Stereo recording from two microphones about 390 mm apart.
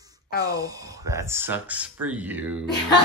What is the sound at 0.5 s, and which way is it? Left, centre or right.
Speech, centre.